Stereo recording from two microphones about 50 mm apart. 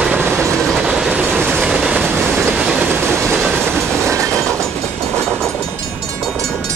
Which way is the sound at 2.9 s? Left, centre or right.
Right.